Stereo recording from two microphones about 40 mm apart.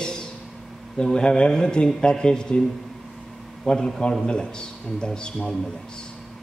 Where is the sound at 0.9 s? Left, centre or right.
Centre.